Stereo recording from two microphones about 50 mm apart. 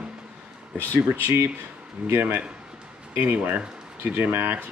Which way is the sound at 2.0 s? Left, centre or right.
Right.